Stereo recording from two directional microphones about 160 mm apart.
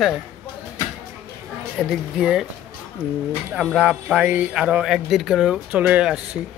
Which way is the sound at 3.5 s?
5° right (ahead or behind).